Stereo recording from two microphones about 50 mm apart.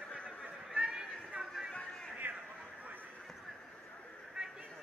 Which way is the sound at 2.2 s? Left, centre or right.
Right.